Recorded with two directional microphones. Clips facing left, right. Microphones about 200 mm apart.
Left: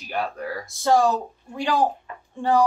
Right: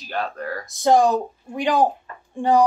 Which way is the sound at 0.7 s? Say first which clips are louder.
Right 3 dB; 20° right (ahead or behind).